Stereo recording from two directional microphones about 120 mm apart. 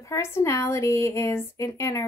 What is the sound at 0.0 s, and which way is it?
A woman's voice, 25° left (ahead or behind).